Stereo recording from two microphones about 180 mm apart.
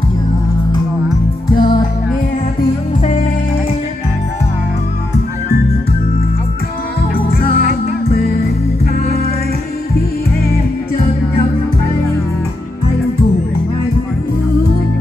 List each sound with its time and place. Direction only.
1.5 s music: 50° left (ahead or behind)
3.0 s music: 40° left (ahead or behind)
7.0 s music: 55° left (ahead or behind)